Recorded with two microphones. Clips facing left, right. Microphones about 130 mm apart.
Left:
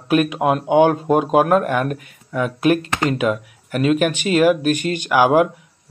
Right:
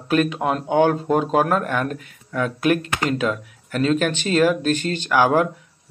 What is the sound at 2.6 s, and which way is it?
Speech, 30° left (ahead or behind).